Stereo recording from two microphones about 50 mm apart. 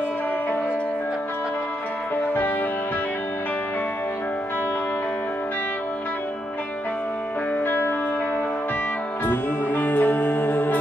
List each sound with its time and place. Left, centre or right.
7.6 s music: left
9.2 s music: left